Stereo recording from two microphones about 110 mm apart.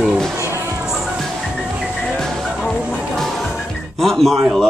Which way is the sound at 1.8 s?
Centre (ahead or behind).